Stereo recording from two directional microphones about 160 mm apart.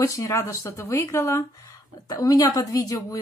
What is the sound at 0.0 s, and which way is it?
Speech, 20° left (ahead or behind).